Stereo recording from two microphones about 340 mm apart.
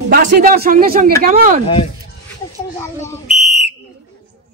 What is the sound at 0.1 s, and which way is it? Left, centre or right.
A man's voice, right.